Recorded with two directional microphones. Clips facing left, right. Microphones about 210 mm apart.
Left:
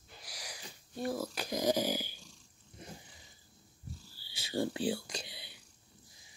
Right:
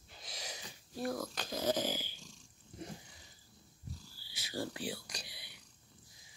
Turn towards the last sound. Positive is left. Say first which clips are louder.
# left 6 dB
turn(degrees=25)  # may be behind; listen again after turning